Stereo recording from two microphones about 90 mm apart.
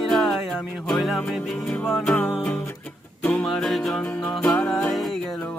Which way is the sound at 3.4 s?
5° left (ahead or behind).